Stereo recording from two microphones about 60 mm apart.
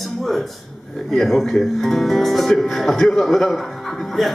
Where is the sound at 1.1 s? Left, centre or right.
Centre.